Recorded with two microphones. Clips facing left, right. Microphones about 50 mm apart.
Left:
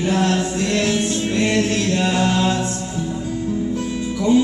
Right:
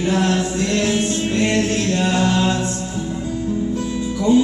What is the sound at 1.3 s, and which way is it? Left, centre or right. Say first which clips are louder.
Music: even; centre.